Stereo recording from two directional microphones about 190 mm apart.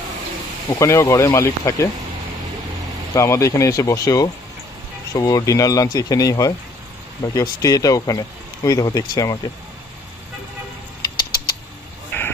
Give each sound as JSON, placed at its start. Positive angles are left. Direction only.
{"t": 0.7, "sound": "speech", "side_deg": 15}
{"t": 3.2, "sound": "speech", "side_deg": 15}
{"t": 11.0, "sound": "mechanisms", "side_deg": 20}
{"t": 12.1, "sound": "a sound", "side_deg": 10}